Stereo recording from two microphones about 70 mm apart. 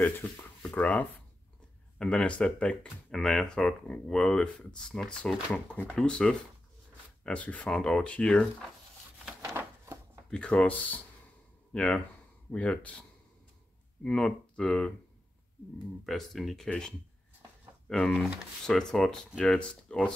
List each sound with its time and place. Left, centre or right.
0.0 s speech: left
3.1 s speech: centre
9.5 s a sound: right
10.3 s speech: centre
14.0 s speech: centre
16.1 s speech: centre